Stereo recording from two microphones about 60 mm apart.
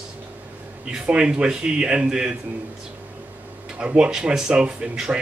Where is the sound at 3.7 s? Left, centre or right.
Centre.